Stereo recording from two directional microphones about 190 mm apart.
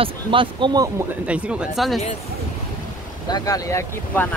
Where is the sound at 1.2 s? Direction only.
5° right (ahead or behind).